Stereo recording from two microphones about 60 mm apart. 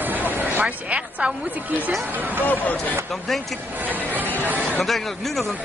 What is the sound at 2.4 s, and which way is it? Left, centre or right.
Speech, left.